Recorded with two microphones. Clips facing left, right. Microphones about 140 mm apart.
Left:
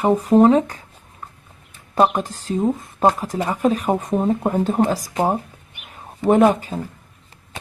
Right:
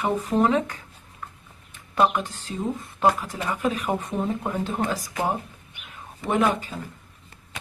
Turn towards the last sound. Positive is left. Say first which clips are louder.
# left 6 dB
turn(degrees=40)  # may be behind; listen again after turning